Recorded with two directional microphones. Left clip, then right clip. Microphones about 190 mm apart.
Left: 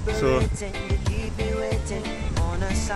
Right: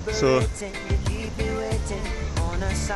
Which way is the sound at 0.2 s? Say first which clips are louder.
Right 2 dB; 5° right (ahead or behind).